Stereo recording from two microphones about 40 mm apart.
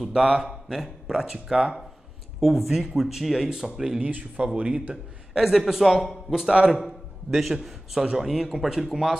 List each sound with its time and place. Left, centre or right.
0.0 s a man's voice: centre
4.0 s speech: right
5.3 s a man's voice: centre